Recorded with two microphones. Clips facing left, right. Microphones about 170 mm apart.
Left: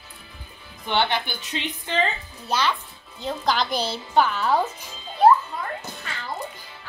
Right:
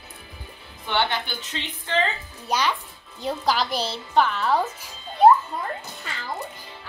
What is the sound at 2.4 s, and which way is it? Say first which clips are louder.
A child's voice: even; 15° right (ahead or behind).